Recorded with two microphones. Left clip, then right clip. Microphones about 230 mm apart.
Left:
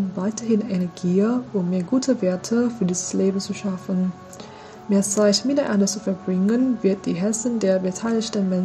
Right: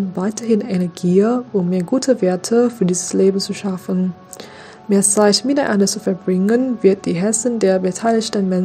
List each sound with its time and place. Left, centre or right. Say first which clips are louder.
0.2 s speech: right 5 dB; right
4.8 s speech: right 5 dB; right